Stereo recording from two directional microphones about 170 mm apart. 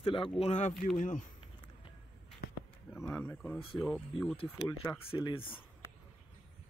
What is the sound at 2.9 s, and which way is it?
Speech, 10° left (ahead or behind).